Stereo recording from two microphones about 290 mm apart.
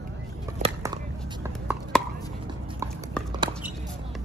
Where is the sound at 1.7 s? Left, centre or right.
Centre.